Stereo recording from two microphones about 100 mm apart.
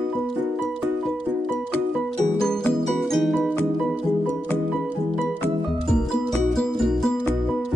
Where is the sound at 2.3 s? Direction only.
5° left (ahead or behind).